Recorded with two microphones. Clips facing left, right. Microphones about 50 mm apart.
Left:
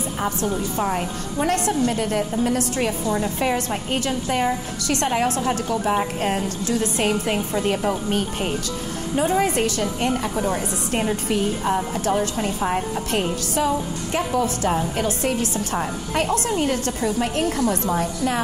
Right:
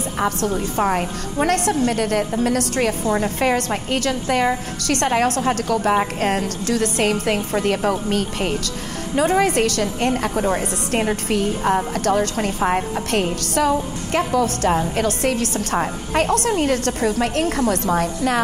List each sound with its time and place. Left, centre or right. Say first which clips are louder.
0.6 s a woman's voice: right 3 dB; right
12.5 s a woman's voice: right 5 dB; right
13.1 s a woman's voice: right 3 dB; right